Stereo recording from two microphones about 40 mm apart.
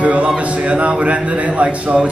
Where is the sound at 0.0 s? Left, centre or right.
Right.